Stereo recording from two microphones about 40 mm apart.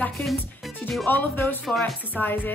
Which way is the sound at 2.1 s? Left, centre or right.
Left.